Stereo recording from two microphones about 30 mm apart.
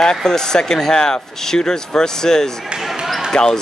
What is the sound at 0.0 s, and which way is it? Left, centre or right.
Speech, left.